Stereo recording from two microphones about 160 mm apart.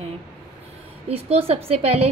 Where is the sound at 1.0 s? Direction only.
40° right (ahead or behind).